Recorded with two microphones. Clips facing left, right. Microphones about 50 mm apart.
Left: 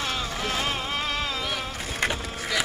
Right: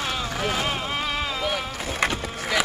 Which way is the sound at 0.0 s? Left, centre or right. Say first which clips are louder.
Right 2 dB; centre.